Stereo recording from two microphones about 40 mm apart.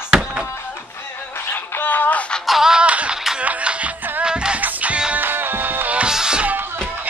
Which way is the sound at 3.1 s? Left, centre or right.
Centre.